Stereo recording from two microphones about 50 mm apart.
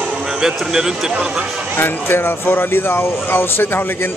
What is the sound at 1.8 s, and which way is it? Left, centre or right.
Speech, left.